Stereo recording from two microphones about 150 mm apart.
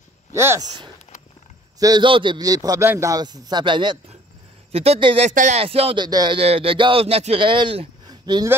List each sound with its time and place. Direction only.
0.3 s speech: 15° right (ahead or behind)
0.7 s a man's voice: 30° right (ahead or behind)
5.3 s speech: 55° right (ahead or behind)
5.6 s speech: 40° right (ahead or behind)
6.0 s speech: 30° right (ahead or behind)